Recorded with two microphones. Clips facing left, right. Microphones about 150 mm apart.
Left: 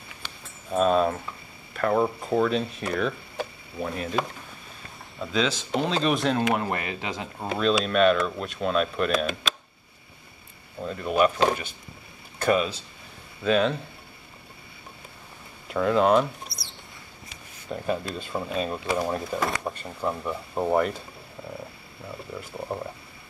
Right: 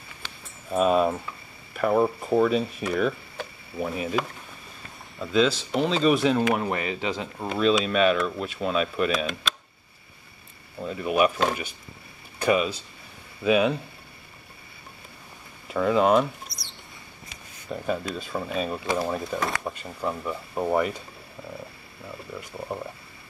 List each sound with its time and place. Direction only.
0.7 s speech: 5° right (ahead or behind)
5.2 s speech: centre (ahead or behind)
10.8 s speech: 5° right (ahead or behind)
12.4 s speech: 5° right (ahead or behind)
15.7 s speech: centre (ahead or behind)
17.6 s speech: centre (ahead or behind)
22.3 s speech: 5° left (ahead or behind)